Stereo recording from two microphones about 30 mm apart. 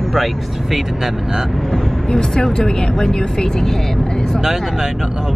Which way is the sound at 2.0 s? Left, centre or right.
Left.